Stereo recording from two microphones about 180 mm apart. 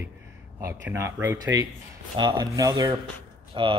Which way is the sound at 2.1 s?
25° right (ahead or behind).